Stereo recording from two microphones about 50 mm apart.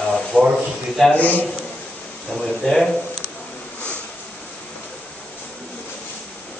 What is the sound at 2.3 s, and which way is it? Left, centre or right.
Speech, centre.